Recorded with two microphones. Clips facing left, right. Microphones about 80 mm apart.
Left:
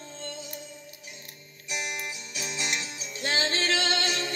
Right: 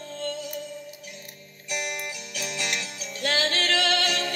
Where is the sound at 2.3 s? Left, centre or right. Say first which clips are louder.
Right 2 dB; right.